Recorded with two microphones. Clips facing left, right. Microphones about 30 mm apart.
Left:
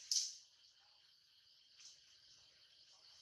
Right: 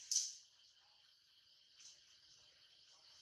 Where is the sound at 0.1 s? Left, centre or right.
Left.